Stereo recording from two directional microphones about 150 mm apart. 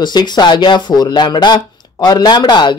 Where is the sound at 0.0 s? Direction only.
30° left (ahead or behind).